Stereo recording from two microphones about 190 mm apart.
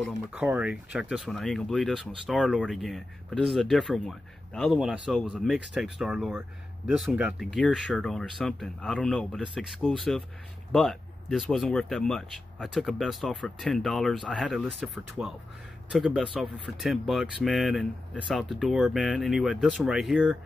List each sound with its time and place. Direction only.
0.0 s speech: 5° right (ahead or behind)